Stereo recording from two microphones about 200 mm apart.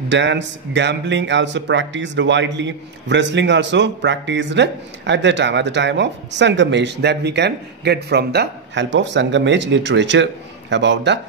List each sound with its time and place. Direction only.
0.1 s speech: 65° right (ahead or behind)